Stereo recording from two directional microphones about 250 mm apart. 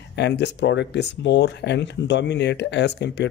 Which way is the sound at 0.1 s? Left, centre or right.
Left.